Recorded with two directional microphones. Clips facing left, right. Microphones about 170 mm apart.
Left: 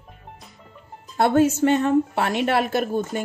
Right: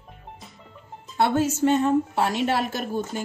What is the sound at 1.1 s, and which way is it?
Speech, 50° left (ahead or behind).